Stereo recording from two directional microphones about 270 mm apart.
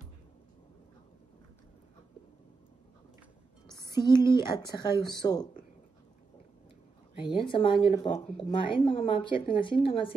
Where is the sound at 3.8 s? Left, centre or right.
Centre.